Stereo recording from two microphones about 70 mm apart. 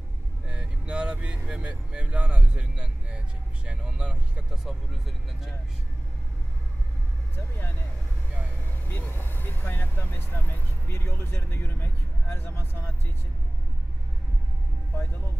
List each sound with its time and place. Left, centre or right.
0.5 s speech: centre
4.6 s speech: centre
7.3 s speech: left
8.8 s speech: left